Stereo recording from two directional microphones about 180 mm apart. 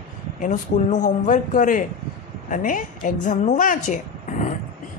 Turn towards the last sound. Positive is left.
turn(degrees=45)  # may be behind; listen again after turning